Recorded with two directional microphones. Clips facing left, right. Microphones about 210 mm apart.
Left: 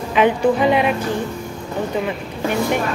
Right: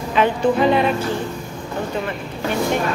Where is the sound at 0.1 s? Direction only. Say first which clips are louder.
Left 2 dB; 15° left (ahead or behind).